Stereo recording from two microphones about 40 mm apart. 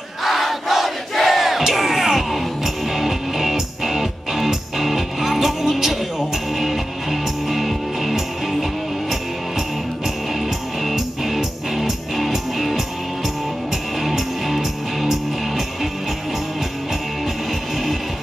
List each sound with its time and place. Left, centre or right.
0.2 s battle cry: centre
10.8 s music: centre
14.0 s music: centre